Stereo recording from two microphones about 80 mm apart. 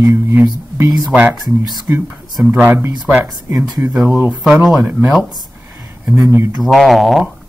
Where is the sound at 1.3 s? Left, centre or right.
Right.